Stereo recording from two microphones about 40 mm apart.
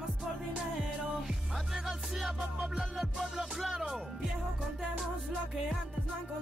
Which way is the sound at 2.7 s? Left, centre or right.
Centre.